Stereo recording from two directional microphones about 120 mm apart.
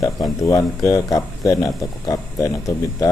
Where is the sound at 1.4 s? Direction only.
30° left (ahead or behind).